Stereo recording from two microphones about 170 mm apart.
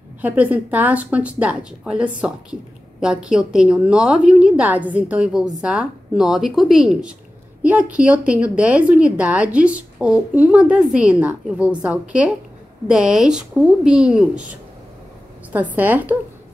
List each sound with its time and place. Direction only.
0.2 s a woman's voice: 10° right (ahead or behind)
15.5 s a woman's voice: 10° right (ahead or behind)